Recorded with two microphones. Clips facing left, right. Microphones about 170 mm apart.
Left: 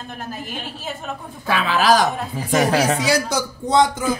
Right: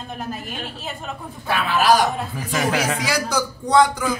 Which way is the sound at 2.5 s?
35° left (ahead or behind).